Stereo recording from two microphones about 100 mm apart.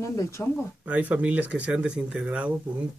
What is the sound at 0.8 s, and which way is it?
Speech, 15° right (ahead or behind).